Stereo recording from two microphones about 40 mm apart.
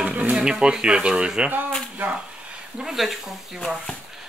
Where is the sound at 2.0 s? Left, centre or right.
Right.